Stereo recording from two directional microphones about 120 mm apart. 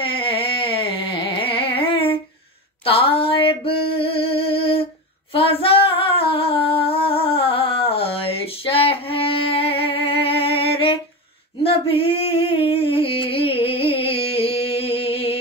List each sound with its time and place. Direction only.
0.0 s carnatic music: 45° left (ahead or behind)
2.8 s a sound: 50° left (ahead or behind)
5.3 s female singing: 50° left (ahead or behind)